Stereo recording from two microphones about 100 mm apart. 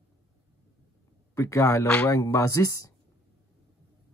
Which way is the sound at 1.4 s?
30° left (ahead or behind).